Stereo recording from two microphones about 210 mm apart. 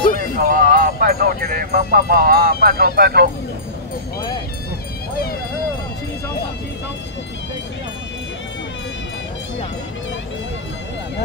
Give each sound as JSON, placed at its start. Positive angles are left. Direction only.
{"t": 0.4, "sound": "speech", "side_deg": -40}